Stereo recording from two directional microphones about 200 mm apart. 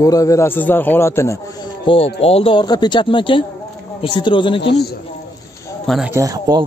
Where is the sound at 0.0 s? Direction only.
15° left (ahead or behind).